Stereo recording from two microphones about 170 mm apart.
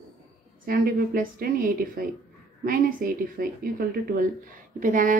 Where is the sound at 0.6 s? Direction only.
60° right (ahead or behind).